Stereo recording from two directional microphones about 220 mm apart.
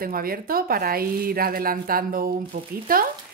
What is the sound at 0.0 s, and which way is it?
Speech, 40° right (ahead or behind).